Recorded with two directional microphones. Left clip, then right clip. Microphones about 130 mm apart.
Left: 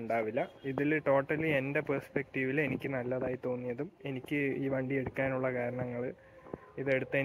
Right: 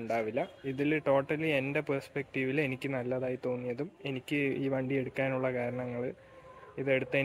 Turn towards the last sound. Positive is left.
turn(degrees=-25)  # may be behind; listen again after turning